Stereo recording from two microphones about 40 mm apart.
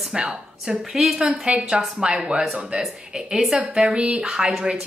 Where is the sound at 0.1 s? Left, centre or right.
Centre.